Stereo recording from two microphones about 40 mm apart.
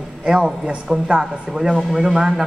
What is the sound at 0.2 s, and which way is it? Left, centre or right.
A man's voice, right.